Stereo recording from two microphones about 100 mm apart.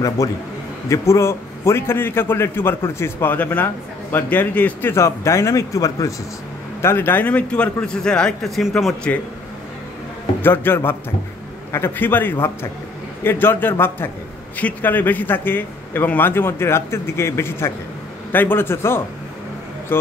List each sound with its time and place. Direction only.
0.2 s a man's voice: 35° left (ahead or behind); by 4.9 s 15° left (ahead or behind)
4.9 s speech: 30° left (ahead or behind)
6.8 s speech: 25° left (ahead or behind); by 9.1 s centre (ahead or behind)
10.4 s a man's voice: 20° left (ahead or behind)